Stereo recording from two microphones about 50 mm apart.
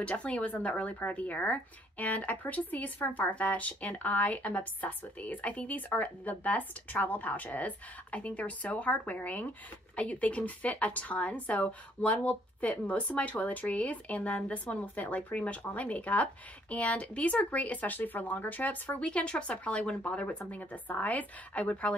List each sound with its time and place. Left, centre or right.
0.0 s a woman's voice: left
18.9 s a woman's voice: left